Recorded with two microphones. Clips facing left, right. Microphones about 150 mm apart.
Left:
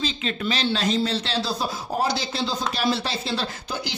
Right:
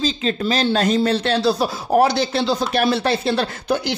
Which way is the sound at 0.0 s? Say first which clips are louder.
Right 6 dB; 35° right (ahead or behind).